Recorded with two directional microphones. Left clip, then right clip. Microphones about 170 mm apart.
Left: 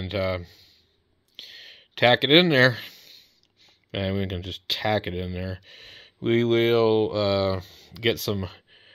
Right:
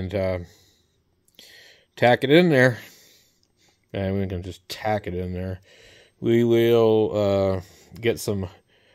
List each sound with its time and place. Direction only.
0.0 s speech: 30° right (ahead or behind)
1.3 s a sound: 30° right (ahead or behind)
3.9 s speech: 15° right (ahead or behind)